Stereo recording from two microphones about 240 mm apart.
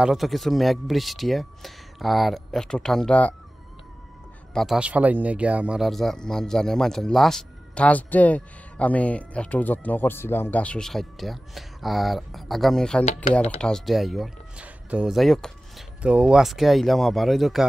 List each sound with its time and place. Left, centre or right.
0.0 s speech: centre
4.6 s speech: centre
13.0 s speech: left
13.6 s speech: centre